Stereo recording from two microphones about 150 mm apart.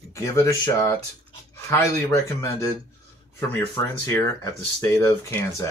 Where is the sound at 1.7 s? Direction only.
20° left (ahead or behind).